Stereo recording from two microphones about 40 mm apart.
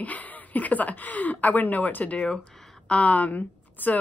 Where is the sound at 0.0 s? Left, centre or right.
Left.